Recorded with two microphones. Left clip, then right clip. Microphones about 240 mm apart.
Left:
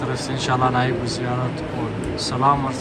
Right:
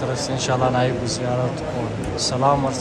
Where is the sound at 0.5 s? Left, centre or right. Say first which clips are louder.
Left 1 dB; centre.